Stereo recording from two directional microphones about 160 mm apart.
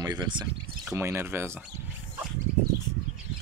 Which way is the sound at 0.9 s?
15° right (ahead or behind).